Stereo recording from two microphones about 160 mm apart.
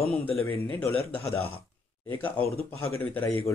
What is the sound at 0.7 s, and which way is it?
Speech, 10° left (ahead or behind).